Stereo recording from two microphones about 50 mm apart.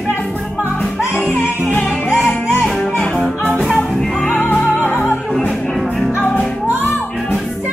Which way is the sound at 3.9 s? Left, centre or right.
Centre.